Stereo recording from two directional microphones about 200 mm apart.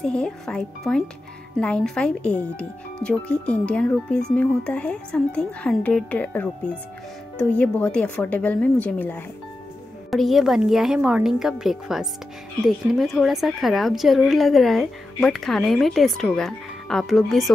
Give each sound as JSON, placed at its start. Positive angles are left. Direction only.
{"t": 0.0, "sound": "a woman's voice", "side_deg": 5}